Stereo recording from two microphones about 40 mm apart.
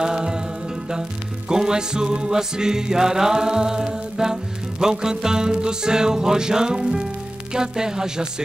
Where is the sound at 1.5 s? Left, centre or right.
Centre.